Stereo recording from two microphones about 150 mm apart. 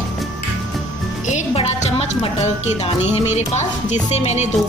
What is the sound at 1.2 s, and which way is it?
Speech, 50° left (ahead or behind).